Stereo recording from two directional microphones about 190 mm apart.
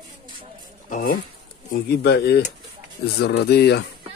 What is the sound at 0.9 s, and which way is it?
Speech, 50° left (ahead or behind).